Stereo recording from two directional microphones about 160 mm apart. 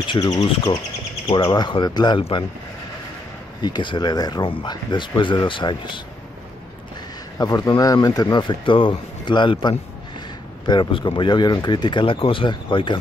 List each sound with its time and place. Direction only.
0.0 s speech: 30° left (ahead or behind)
3.6 s speech: 30° left (ahead or behind)
7.3 s speech: 25° left (ahead or behind)